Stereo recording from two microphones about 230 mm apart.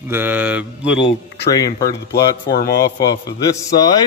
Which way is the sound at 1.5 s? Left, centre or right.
Centre.